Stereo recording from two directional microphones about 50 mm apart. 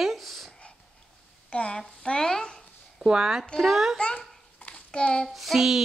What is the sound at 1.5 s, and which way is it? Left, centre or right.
Speech, left.